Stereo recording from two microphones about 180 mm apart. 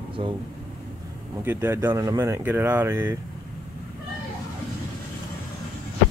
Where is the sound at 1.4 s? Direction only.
15° right (ahead or behind).